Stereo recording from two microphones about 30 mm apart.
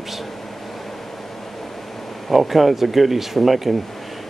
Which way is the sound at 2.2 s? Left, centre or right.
Centre.